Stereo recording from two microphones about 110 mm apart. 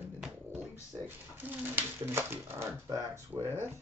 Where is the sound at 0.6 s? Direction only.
20° right (ahead or behind).